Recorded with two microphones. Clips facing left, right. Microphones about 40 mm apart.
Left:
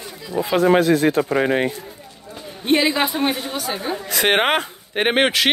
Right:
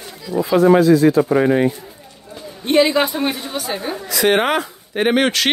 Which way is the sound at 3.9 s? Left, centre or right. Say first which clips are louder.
Right 2 dB; left.